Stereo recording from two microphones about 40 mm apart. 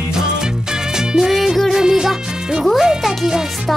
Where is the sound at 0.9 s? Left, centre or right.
Centre.